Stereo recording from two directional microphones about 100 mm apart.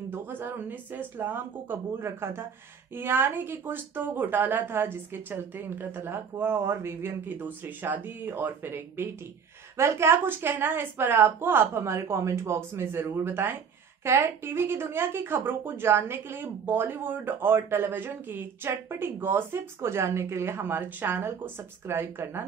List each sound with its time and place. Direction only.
0.1 s a woman's voice: 20° right (ahead or behind)